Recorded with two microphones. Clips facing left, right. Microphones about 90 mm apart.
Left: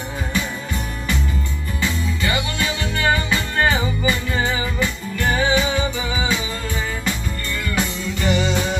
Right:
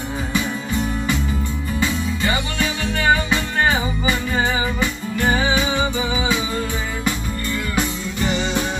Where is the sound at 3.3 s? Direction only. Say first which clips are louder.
Even; 15° right (ahead or behind).